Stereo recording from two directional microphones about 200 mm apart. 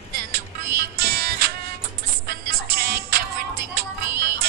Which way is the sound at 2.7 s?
50° right (ahead or behind).